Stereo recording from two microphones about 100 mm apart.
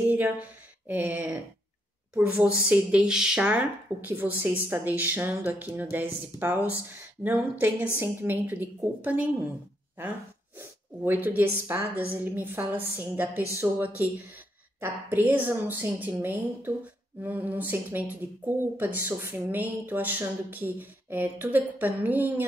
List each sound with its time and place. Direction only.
0.1 s speech: 15° right (ahead or behind)
10.6 s a woman's voice: 20° right (ahead or behind)